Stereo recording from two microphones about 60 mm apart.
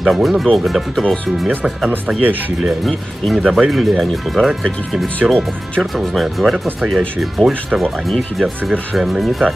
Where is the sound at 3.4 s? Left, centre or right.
Centre.